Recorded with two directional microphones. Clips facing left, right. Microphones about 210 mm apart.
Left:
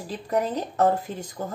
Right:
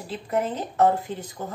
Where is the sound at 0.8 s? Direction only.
45° left (ahead or behind).